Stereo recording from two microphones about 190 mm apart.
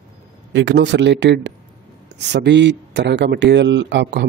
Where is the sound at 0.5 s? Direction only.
70° right (ahead or behind).